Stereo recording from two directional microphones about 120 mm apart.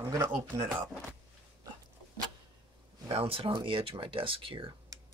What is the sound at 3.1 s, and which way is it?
Speech, 50° right (ahead or behind).